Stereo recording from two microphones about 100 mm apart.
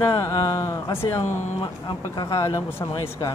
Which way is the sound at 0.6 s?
35° left (ahead or behind).